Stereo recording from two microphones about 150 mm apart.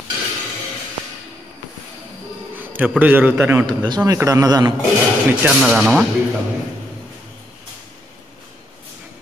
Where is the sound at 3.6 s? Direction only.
30° right (ahead or behind).